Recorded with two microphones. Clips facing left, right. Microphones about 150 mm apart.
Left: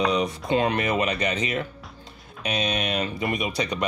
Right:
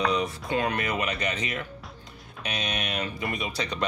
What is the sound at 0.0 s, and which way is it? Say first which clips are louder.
Speech: left 3 dB; 20° left (ahead or behind).